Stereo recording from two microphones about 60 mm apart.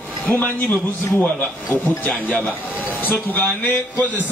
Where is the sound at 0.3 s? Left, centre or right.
Left.